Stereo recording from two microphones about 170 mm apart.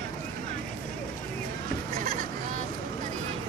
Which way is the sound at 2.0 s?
55° right (ahead or behind).